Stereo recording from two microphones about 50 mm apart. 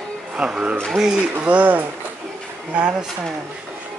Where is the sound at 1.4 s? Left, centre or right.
Right.